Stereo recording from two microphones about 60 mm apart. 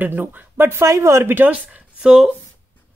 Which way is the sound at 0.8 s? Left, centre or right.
Right.